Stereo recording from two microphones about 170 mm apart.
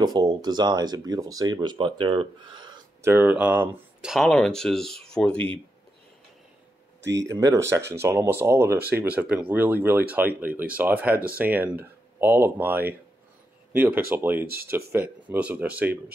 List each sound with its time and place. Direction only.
0.0 s speech: 25° right (ahead or behind)
3.1 s speech: 10° right (ahead or behind); by 5.5 s 5° left (ahead or behind)
7.2 s speech: 20° right (ahead or behind)
14.4 s speech: 65° right (ahead or behind)
14.7 s speech: 15° right (ahead or behind)